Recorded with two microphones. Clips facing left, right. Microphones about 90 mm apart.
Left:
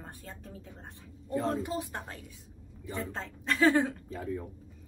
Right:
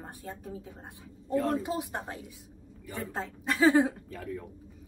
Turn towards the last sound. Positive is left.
turn(degrees=20)  # may be behind; listen again after turning